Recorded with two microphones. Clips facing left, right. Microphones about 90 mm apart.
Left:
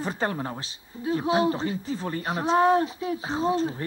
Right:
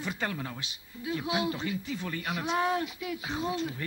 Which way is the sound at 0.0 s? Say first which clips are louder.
Left 6 dB; 35° left (ahead or behind).